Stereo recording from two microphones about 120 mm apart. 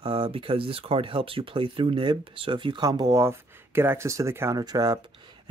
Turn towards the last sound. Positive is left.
turn(degrees=-30)  # may be behind; listen again after turning